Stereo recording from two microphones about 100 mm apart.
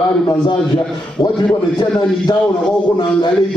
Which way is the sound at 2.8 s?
45° left (ahead or behind).